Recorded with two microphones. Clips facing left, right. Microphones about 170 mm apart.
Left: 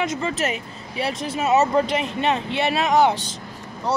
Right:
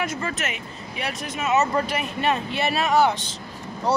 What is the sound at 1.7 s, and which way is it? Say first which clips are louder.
Speech: left 4 dB; 20° left (ahead or behind).